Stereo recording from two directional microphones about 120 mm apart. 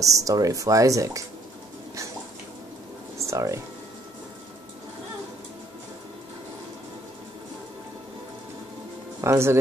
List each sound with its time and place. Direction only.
0.0 s speech: 30° right (ahead or behind)
3.2 s music: 25° right (ahead or behind)
9.2 s speech: 25° right (ahead or behind)